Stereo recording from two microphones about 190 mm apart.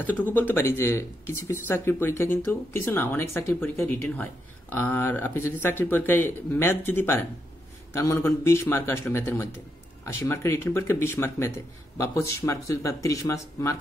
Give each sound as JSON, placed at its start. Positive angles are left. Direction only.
{"t": 0.3, "sound": "speech", "side_deg": 10}